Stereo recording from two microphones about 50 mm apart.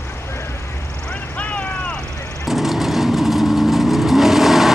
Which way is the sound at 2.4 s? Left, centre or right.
Centre.